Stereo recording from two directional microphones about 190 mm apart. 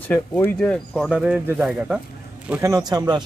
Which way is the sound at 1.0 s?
5° right (ahead or behind).